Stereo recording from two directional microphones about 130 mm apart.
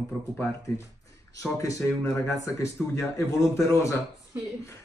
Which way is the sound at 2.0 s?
25° left (ahead or behind).